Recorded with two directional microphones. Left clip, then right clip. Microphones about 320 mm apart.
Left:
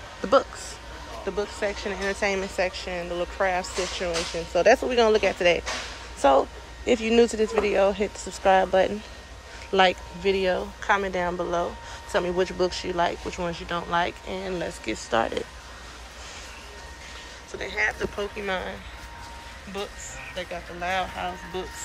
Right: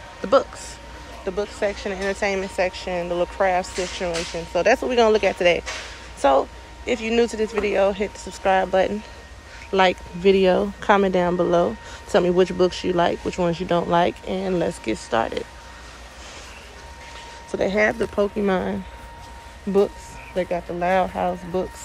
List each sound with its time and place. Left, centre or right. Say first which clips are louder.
0.2 s a man's voice: right 3 dB; centre
17.5 s speech: right 7 dB; centre
20.3 s speech: right 10 dB; centre